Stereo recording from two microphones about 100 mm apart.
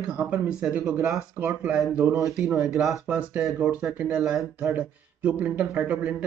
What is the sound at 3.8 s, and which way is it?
Speech, 25° right (ahead or behind).